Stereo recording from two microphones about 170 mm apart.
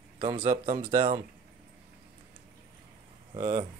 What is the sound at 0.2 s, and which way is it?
Speech, 30° right (ahead or behind).